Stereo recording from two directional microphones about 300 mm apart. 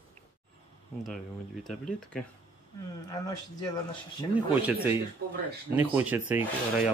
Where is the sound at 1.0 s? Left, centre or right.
Centre.